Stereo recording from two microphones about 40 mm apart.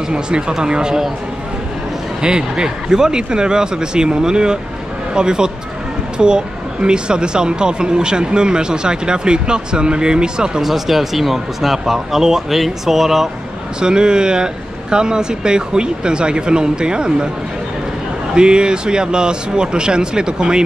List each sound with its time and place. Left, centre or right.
0.1 s speech: centre
2.2 s speech: right
10.6 s speech: centre
13.7 s speech: right
18.3 s speech: right